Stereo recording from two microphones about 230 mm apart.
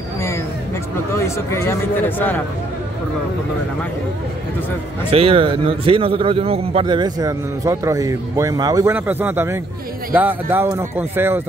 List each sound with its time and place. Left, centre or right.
1.1 s speech: centre
5.1 s a man's voice: right